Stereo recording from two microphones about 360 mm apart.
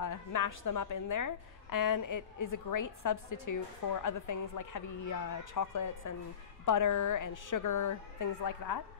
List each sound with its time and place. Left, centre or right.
0.0 s a woman's voice: left